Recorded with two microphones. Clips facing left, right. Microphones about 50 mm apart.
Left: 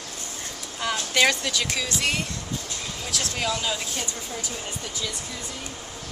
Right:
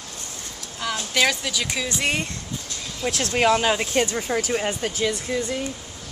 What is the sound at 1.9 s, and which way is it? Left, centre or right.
Speech, right.